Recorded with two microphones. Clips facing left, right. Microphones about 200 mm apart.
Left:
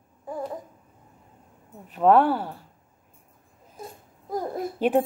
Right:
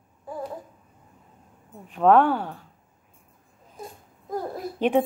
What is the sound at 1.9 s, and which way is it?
Speech, 10° left (ahead or behind).